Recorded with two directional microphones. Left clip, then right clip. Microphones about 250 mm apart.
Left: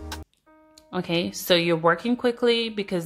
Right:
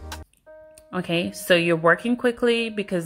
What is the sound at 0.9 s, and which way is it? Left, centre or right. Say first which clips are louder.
Speech: right 1 dB; centre.